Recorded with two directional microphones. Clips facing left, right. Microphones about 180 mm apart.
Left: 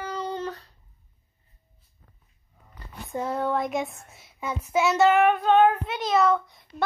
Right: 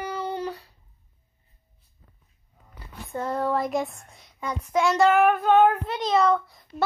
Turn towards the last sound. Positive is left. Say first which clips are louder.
# right 1 dB
turn(degrees=0)  # may be behind; listen again after turning